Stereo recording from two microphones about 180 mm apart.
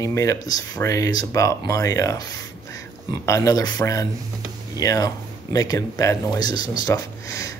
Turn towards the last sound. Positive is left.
turn(degrees=20)  # may be behind; listen again after turning